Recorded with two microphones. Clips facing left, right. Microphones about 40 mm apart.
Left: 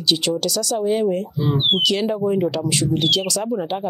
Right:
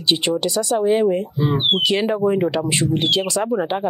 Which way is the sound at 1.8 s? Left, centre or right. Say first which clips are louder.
Right 1 dB; right.